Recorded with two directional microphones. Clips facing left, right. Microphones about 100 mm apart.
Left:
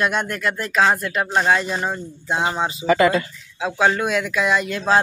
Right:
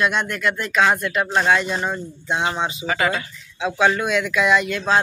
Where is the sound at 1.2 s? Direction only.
Centre (ahead or behind).